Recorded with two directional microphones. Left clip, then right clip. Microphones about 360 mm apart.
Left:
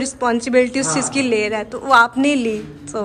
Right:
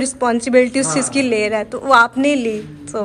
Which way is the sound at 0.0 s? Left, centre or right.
Centre.